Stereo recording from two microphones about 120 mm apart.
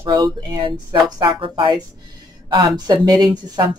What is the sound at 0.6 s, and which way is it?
Speech, 40° right (ahead or behind).